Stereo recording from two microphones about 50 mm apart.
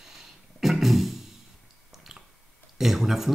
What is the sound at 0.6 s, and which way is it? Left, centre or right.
Music, centre.